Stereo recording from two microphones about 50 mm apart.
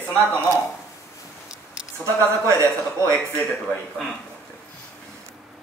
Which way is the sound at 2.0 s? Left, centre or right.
Right.